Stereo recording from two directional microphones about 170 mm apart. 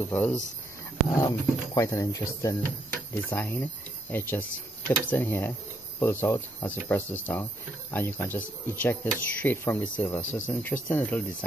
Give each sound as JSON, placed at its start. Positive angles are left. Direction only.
{"t": 0.0, "sound": "speech", "side_deg": 10}